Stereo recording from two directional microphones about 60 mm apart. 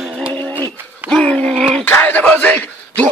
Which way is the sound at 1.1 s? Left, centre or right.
Centre.